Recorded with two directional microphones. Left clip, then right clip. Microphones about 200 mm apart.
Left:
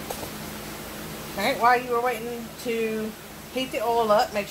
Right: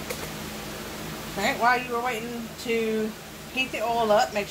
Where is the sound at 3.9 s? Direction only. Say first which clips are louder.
Even; 35° left (ahead or behind).